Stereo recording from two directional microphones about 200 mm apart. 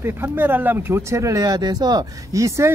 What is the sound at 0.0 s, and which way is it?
Speech, 10° right (ahead or behind).